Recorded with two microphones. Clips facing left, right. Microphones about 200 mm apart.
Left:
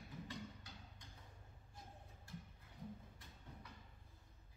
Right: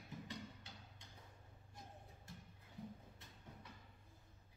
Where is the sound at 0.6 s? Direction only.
25° right (ahead or behind).